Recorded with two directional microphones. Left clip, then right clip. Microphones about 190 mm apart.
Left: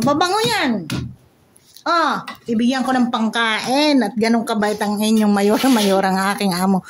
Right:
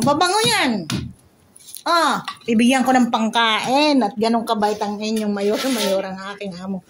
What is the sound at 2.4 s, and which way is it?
Speech, 10° right (ahead or behind).